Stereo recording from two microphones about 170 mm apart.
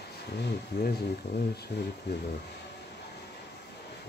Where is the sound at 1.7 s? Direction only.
85° left.